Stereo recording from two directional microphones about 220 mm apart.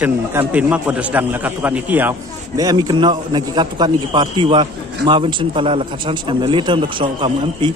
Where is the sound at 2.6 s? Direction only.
20° right (ahead or behind).